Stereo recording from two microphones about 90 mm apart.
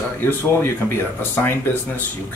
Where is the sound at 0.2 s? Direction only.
25° left (ahead or behind).